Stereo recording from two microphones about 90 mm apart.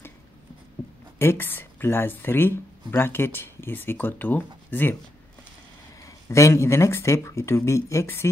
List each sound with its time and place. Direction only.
1.1 s speech: 25° left (ahead or behind)
6.0 s speech: 35° left (ahead or behind)